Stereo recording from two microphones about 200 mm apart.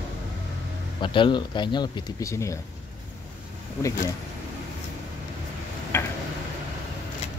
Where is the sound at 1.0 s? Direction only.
25° left (ahead or behind).